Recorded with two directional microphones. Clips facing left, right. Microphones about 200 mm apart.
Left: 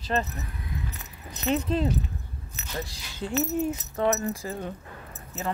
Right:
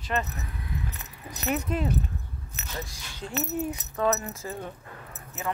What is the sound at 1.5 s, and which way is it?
Speech, 30° left (ahead or behind).